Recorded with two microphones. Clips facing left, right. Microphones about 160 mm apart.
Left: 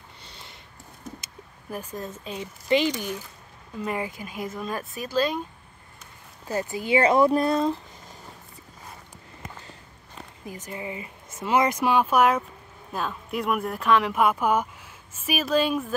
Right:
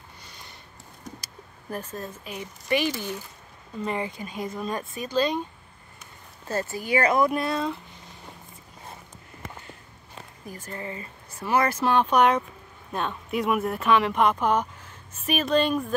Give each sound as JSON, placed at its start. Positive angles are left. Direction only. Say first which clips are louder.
{"t": 0.3, "sound": "a sound", "louder": "left 2 dB", "side_deg": 25}
{"t": 1.7, "sound": "speech", "louder": "even", "side_deg": 10}
{"t": 2.2, "sound": "speech", "louder": "left 5 dB", "side_deg": 20}
{"t": 3.8, "sound": "speech", "louder": "even", "side_deg": 5}
{"t": 6.4, "sound": "speech", "louder": "left 1 dB", "side_deg": 15}
{"t": 10.4, "sound": "speech", "louder": "left 1 dB", "side_deg": 15}